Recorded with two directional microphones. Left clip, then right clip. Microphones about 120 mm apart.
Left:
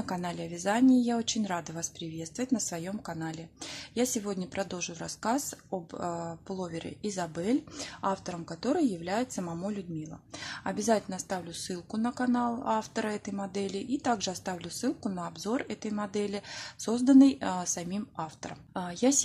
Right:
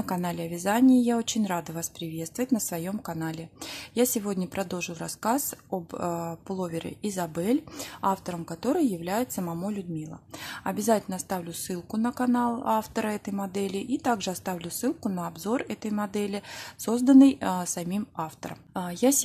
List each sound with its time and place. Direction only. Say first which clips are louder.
0.0 s a woman's voice: right 4 dB; 35° right (ahead or behind)